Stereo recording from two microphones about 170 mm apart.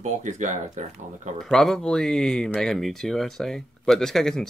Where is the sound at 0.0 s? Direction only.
45° right (ahead or behind).